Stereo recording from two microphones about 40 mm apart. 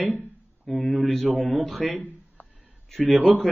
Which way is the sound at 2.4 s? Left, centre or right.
Left.